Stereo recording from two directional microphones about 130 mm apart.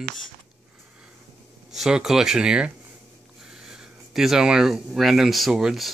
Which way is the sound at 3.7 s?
5° right (ahead or behind).